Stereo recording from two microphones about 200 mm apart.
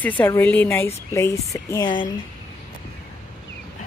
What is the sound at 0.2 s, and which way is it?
A woman's voice, 10° left (ahead or behind).